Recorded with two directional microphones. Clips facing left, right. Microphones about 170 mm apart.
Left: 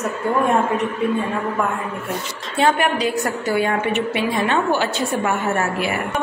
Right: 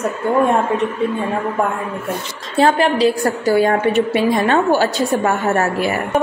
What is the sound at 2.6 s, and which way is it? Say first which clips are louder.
A woman's voice: right 4 dB; 30° right (ahead or behind).